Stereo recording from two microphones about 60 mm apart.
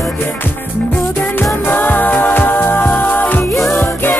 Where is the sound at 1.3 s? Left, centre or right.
Left.